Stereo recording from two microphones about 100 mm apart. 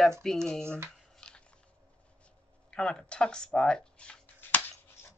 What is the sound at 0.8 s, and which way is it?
Shuffling cards, 5° left (ahead or behind).